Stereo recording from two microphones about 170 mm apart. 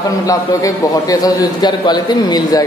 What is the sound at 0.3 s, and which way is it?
Speech, 20° left (ahead or behind).